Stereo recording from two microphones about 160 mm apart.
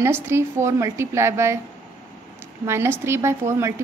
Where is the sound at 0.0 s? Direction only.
15° right (ahead or behind).